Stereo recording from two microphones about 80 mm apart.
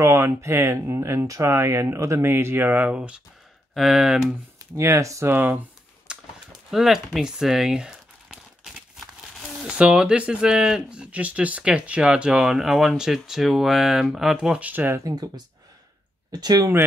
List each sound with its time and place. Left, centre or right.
0.0 s speech: right; by 3.2 s centre
3.7 s speech: centre
4.7 s speech: right
5.3 s speech: right
6.1 s a sound: centre
6.7 s speech: centre
14.7 s speech: right
15.0 s speech: right